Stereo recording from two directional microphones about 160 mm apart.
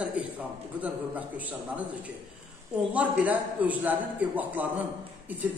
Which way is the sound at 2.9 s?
10° right (ahead or behind).